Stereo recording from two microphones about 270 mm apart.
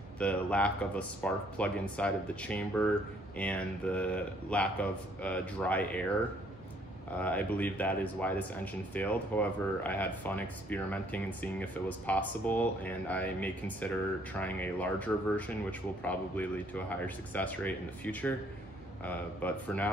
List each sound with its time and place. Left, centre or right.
0.2 s speech: centre
7.1 s speech: centre